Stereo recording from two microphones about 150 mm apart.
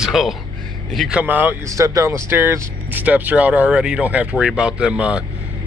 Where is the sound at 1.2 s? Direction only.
10° right (ahead or behind).